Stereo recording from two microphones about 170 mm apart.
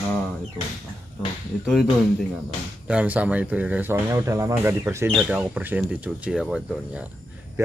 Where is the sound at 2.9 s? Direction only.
10° right (ahead or behind).